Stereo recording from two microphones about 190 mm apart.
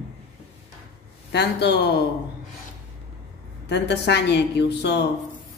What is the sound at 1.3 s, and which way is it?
Speech, 60° left (ahead or behind).